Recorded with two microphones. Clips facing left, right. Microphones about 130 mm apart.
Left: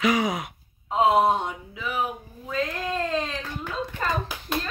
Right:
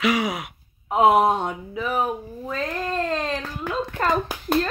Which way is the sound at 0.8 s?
60° right (ahead or behind).